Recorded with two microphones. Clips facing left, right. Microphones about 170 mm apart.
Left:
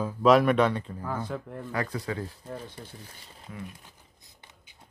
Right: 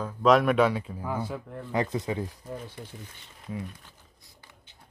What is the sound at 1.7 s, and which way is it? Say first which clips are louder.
Speech: right 4 dB; 20° right (ahead or behind).